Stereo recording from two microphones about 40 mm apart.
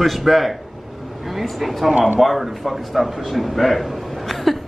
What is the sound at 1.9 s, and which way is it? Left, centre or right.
Speech, right.